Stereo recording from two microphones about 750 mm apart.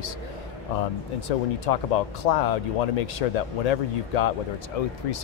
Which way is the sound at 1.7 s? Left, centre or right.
Left.